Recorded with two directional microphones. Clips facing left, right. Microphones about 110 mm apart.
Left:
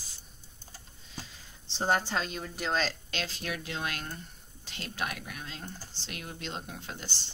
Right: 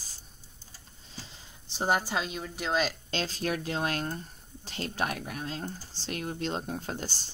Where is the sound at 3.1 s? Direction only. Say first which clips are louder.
Right 5 dB; 35° right (ahead or behind).